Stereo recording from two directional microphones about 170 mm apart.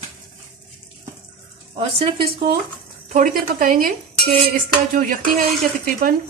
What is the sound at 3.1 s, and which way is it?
Speech, 55° right (ahead or behind).